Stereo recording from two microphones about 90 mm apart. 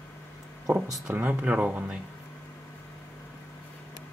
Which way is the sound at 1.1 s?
15° right (ahead or behind).